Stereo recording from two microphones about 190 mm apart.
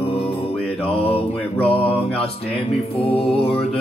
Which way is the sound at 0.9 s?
30° left (ahead or behind).